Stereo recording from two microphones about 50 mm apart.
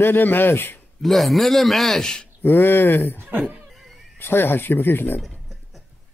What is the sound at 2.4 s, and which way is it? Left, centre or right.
Speech, left.